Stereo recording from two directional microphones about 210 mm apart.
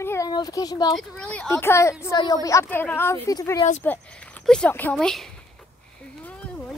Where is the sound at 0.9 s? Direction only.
5° left (ahead or behind).